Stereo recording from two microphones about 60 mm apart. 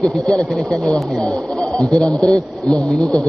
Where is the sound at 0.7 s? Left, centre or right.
Centre.